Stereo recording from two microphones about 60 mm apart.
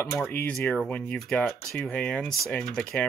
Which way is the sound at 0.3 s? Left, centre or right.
Left.